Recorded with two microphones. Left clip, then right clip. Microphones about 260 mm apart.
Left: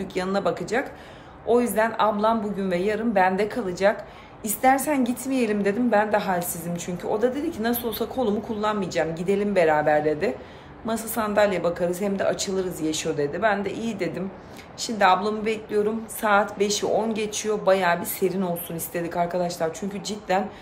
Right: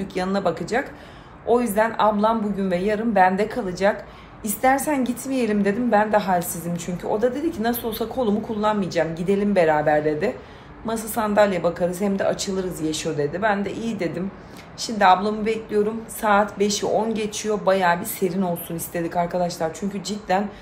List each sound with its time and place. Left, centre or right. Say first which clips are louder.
0.0 s a man's voice: right 2 dB; centre